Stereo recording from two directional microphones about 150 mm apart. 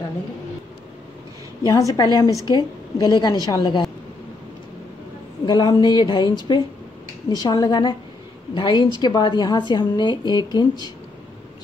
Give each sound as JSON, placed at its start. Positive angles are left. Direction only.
{"t": 1.7, "sound": "a woman's voice", "side_deg": 25}
{"t": 5.4, "sound": "a woman's voice", "side_deg": 30}